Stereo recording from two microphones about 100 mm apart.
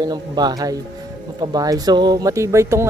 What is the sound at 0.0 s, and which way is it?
Speech, 45° right (ahead or behind).